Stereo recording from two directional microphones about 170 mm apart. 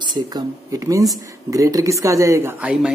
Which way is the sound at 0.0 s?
25° right (ahead or behind).